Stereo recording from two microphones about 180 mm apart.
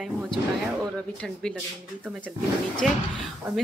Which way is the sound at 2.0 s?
5° right (ahead or behind).